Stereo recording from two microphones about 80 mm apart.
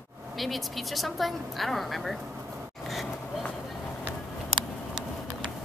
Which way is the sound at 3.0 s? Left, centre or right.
Left.